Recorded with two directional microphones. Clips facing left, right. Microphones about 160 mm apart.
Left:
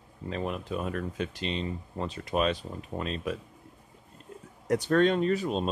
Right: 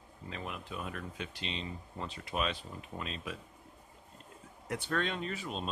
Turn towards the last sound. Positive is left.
turn(degrees=40)  # may be behind; listen again after turning